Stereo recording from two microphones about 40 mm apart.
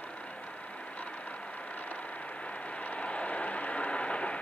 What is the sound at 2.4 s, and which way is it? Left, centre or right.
Vehicle, left.